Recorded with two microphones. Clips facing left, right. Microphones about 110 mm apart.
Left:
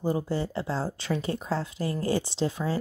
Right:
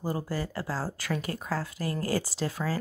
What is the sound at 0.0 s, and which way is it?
Speech, 20° left (ahead or behind).